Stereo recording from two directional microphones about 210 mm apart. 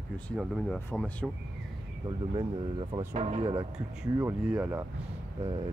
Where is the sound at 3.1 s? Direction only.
30° right (ahead or behind).